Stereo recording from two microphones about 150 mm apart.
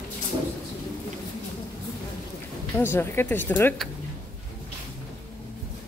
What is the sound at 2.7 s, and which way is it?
Speech, 15° left (ahead or behind).